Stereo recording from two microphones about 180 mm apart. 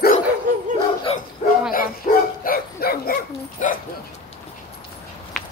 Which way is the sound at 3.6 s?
45° left (ahead or behind).